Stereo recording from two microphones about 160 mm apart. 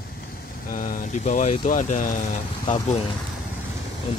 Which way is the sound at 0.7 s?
60° left (ahead or behind).